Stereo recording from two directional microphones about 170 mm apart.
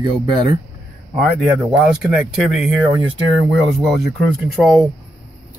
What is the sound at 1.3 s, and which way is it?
Speech, 5° right (ahead or behind).